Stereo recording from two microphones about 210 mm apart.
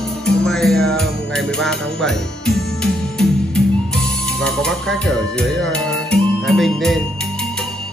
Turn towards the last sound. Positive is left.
turn(degrees=0)  # may be behind; listen again after turning